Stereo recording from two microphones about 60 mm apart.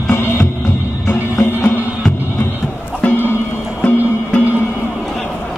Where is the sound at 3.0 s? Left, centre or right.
Left.